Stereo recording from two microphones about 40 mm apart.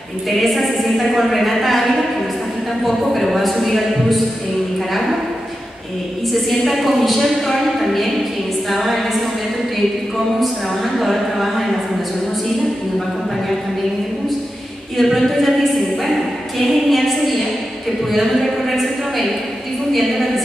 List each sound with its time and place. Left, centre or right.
0.4 s a woman's voice: centre
3.1 s a woman's voice: centre
6.6 s a woman's voice: centre
10.4 s a woman's voice: centre
15.0 s a woman's voice: centre
16.5 s a sound: centre